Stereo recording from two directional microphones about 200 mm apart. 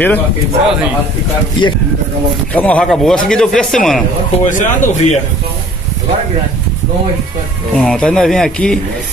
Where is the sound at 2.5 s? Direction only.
5° left (ahead or behind).